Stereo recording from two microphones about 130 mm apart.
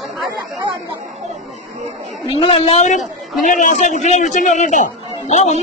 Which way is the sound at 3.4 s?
75° left (ahead or behind).